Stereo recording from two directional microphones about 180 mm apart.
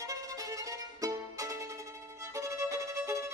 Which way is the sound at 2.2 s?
15° right (ahead or behind).